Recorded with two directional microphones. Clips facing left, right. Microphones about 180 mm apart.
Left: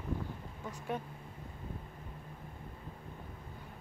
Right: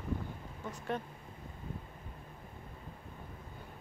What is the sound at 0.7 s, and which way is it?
Speech, 10° left (ahead or behind).